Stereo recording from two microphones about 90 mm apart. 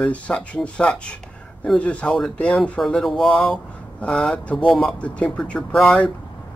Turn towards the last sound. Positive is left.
turn(degrees=0)  # may be behind; listen again after turning